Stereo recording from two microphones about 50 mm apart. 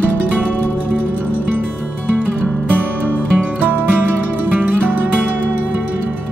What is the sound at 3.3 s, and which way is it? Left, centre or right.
Music, right.